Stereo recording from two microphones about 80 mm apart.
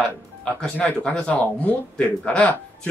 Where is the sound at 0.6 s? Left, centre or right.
Centre.